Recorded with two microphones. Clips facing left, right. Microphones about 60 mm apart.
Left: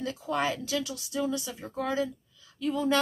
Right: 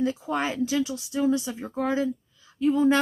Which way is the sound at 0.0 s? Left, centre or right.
Right.